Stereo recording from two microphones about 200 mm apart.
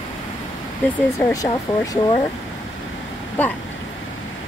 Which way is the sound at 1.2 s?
15° left (ahead or behind).